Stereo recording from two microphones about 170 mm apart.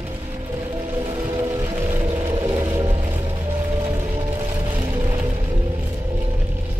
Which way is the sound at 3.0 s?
15° right (ahead or behind).